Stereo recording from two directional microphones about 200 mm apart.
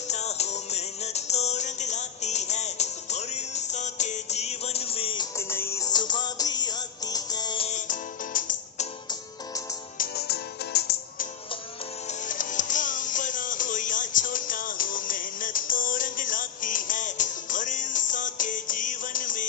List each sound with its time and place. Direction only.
0.1 s music: 35° left (ahead or behind)
9.9 s music: 55° left (ahead or behind)
12.1 s music: 40° left (ahead or behind)